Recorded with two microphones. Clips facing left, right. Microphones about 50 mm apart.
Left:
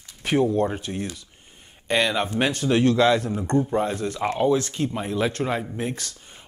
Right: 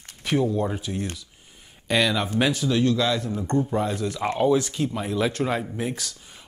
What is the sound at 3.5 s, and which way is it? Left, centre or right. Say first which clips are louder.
Speech: left 1 dB; centre.